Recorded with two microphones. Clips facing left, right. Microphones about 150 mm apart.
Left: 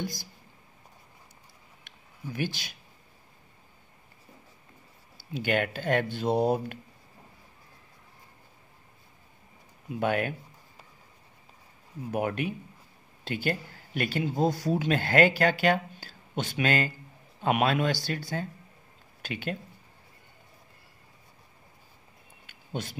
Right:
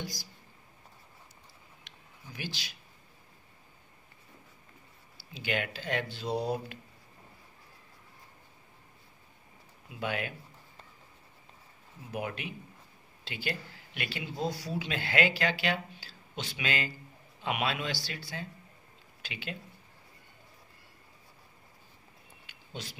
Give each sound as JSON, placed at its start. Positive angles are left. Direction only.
{"t": 0.0, "sound": "speech", "side_deg": 55}
{"t": 1.9, "sound": "a sound", "side_deg": 55}
{"t": 5.1, "sound": "speech", "side_deg": 55}
{"t": 9.8, "sound": "speech", "side_deg": 50}
{"t": 12.1, "sound": "speech", "side_deg": 50}
{"t": 22.5, "sound": "a sound", "side_deg": 50}